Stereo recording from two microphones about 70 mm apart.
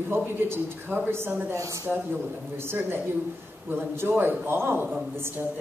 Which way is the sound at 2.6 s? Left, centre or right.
Right.